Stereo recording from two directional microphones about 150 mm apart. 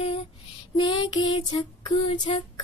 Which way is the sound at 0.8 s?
30° left (ahead or behind).